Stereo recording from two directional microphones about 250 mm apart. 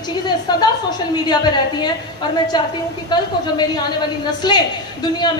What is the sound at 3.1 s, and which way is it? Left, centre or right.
A woman's voice, centre.